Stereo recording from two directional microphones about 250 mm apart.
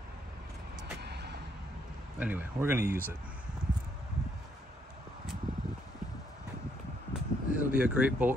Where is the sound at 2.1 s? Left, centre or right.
Centre.